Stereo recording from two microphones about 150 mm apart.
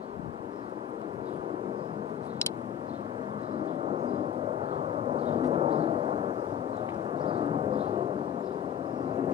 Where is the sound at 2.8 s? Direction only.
35° right (ahead or behind).